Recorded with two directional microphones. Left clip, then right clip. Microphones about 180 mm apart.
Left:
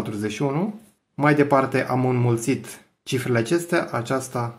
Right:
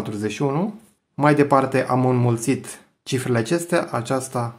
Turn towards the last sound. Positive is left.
turn(degrees=-20)  # may be behind; listen again after turning